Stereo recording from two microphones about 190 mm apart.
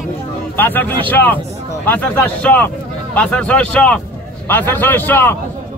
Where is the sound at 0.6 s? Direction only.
10° left (ahead or behind).